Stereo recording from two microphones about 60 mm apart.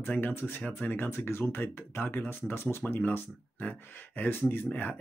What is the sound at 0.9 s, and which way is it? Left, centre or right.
Speech, left.